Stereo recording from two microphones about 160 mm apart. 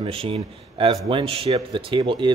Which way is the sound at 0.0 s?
35° right (ahead or behind).